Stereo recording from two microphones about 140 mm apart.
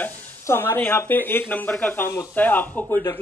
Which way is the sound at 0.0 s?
15° left (ahead or behind).